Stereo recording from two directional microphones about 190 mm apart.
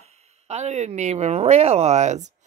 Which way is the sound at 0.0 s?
35° right (ahead or behind).